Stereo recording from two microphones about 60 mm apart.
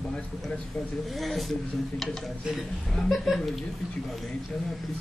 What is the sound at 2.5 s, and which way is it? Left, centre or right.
Speech, centre.